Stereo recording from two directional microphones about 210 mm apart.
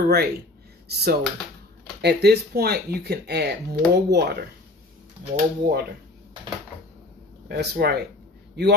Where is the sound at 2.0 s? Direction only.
50° right (ahead or behind).